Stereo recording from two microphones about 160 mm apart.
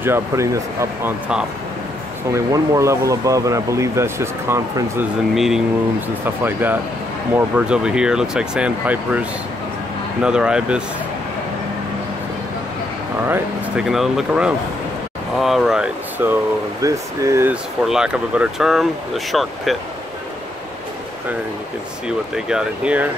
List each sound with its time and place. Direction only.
0.0 s speech: 15° right (ahead or behind)
2.3 s speech: 20° right (ahead or behind)
5.3 s speech: centre (ahead or behind)
6.2 s speech: 10° right (ahead or behind)
10.2 s speech: 5° right (ahead or behind)
13.3 s speech: 5° right (ahead or behind)
17.8 s speech: 5° right (ahead or behind)
22.0 s speech: 5° right (ahead or behind)